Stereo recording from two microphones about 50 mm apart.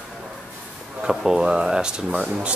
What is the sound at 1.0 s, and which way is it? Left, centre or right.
Speech, centre.